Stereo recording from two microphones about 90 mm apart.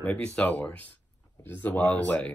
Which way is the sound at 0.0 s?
15° left (ahead or behind).